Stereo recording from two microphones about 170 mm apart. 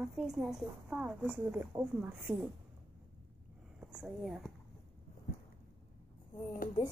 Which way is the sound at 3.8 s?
5° right (ahead or behind).